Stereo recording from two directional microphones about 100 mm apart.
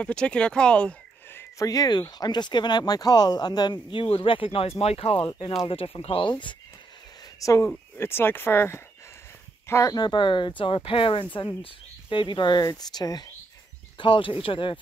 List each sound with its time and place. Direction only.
0.0 s speech: 10° left (ahead or behind)
1.6 s speech: 40° left (ahead or behind); by 5.2 s 80° left
5.7 s speech: 65° left (ahead or behind)
7.3 s speech: 35° left (ahead or behind)
9.9 s speech: 50° left (ahead or behind)
10.6 s speech: 65° left (ahead or behind); by 13.3 s 45° left (ahead or behind)
13.9 s speech: 55° left (ahead or behind)